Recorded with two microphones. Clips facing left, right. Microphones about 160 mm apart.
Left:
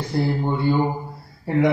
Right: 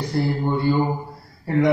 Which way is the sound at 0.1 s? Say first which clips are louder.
Even; 25° left (ahead or behind).